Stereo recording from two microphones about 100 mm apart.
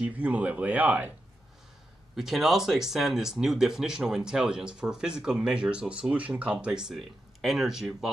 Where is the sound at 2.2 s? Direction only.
Centre (ahead or behind).